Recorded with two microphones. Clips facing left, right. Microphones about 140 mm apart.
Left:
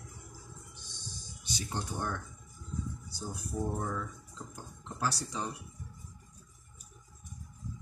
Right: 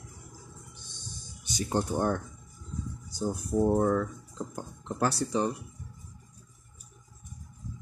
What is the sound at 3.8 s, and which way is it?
Speech, 55° right (ahead or behind).